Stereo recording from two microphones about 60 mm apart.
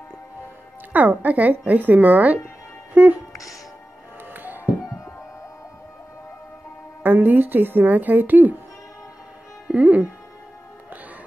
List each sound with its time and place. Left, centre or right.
0.9 s speech: right
2.9 s music: right
4.3 s music: right
4.8 s music: left
7.0 s speech: right
9.7 s speech: right